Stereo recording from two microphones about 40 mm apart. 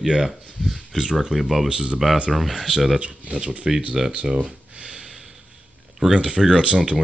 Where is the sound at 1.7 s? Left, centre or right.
Right.